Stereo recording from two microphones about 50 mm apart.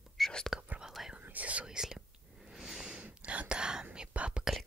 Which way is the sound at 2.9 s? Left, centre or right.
Right.